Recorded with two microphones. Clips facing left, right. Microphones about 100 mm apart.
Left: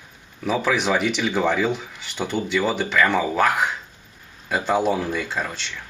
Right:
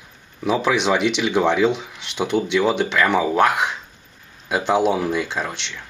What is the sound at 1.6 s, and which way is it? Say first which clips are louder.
Speech: right 5 dB; 80° right.